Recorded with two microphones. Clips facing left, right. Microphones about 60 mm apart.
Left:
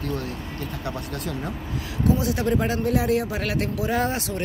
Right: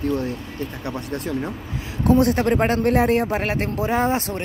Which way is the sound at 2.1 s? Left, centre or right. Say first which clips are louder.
Right 6 dB; right.